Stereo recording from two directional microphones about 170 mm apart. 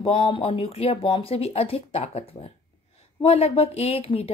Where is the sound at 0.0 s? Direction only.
30° left (ahead or behind).